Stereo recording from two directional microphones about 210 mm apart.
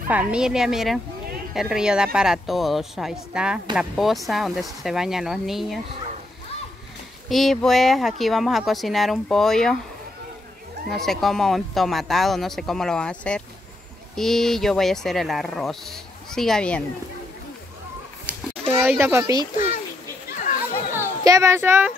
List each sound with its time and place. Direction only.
0.1 s speech: 5° right (ahead or behind)
7.2 s speech: centre (ahead or behind)
10.9 s speech: centre (ahead or behind)
18.2 s a sound: 10° right (ahead or behind)
19.5 s a child's voice: 40° left (ahead or behind)
20.9 s speech: 15° right (ahead or behind)